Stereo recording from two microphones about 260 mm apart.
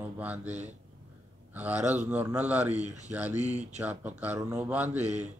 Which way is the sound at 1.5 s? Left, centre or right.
Centre.